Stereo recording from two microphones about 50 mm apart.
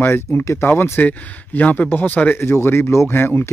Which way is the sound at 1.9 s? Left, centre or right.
Left.